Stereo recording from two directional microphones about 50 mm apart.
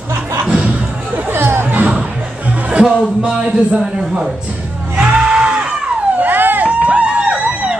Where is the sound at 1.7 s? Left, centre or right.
Right.